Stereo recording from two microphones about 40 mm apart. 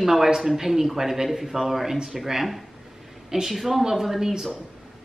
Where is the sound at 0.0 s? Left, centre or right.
Centre.